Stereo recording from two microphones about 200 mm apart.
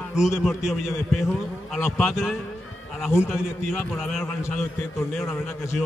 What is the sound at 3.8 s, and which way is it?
A man's voice, centre (ahead or behind).